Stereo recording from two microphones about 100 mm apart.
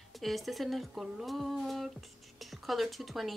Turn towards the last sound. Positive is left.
turn(degrees=0)  # may be behind; listen again after turning